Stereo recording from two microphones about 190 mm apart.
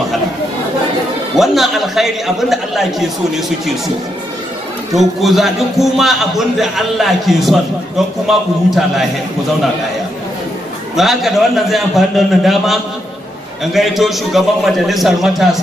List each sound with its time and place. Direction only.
1.3 s a man's voice: centre (ahead or behind)
4.9 s a man's voice: centre (ahead or behind)
11.0 s a man's voice: centre (ahead or behind)
13.7 s a man's voice: centre (ahead or behind)